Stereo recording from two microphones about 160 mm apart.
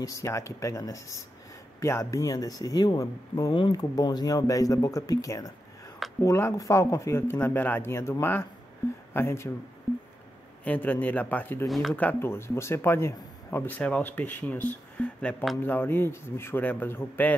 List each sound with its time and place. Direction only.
0.0 s speech: 20° left (ahead or behind)
10.6 s speech: 10° left (ahead or behind)
11.6 s speech: centre (ahead or behind)
11.9 s speech: 10° left (ahead or behind)